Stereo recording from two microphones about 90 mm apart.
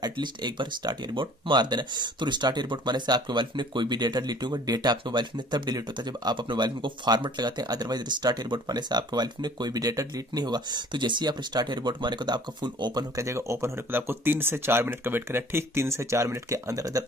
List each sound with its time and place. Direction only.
0.0 s speech: 55° right (ahead or behind)
13.1 s speech: 35° right (ahead or behind)